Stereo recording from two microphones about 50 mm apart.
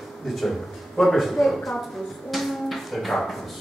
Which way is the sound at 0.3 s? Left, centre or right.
Centre.